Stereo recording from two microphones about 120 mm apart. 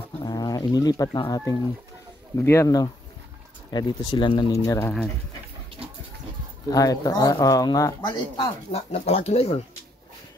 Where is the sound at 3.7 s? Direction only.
40° left (ahead or behind).